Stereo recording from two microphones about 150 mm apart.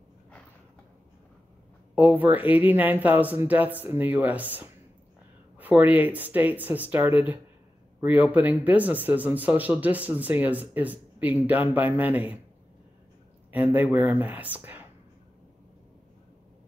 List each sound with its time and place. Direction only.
2.0 s speech: 10° right (ahead or behind)
13.5 s speech: 10° right (ahead or behind)